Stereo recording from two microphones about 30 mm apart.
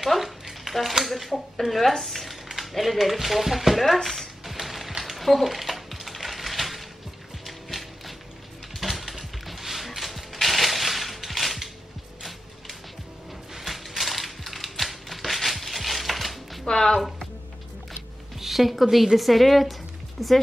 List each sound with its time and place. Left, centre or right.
0.0 s a sound: centre
1.0 s speech: centre
3.8 s speech: centre
4.5 s mechanisms: centre
5.0 s a sound: centre
8.7 s music: centre
9.5 s a sound: centre
12.2 s music: centre
13.6 s typewriter: centre
16.6 s music: left
18.4 s a woman's voice: centre